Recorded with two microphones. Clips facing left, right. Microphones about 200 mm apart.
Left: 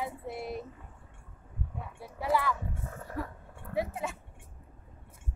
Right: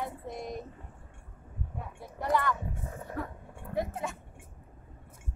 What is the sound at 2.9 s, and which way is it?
Speech, 20° right (ahead or behind).